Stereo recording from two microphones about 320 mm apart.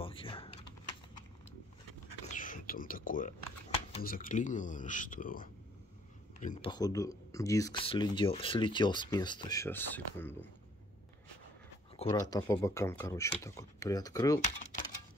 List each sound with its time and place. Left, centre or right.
0.0 s typing: centre
2.3 s speech: left; by 10.3 s centre
12.0 s speech: centre